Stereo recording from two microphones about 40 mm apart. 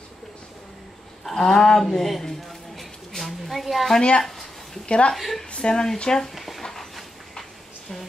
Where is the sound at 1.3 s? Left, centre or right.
Centre.